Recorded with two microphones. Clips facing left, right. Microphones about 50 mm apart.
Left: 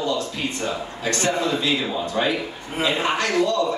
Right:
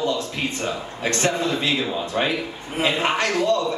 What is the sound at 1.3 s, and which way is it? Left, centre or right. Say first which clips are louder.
Speech: left 1 dB; centre.